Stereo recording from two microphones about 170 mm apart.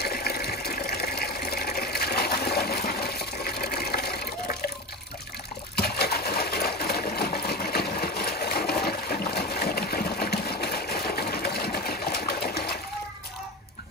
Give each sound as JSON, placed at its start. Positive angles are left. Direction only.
{"t": 0.0, "sound": "water", "side_deg": 65}
{"t": 5.8, "sound": "sewing machine", "side_deg": 65}